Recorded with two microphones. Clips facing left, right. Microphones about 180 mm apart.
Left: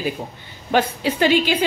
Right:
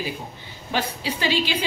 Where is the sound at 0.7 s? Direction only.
50° left (ahead or behind).